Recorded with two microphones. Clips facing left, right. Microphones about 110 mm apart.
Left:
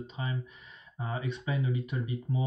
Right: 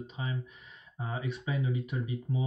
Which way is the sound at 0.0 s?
5° right (ahead or behind).